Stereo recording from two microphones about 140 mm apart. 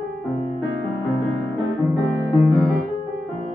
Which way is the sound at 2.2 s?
25° right (ahead or behind).